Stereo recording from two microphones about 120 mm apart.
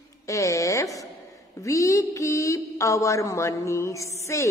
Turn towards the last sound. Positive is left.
turn(degrees=25)  # may be behind; listen again after turning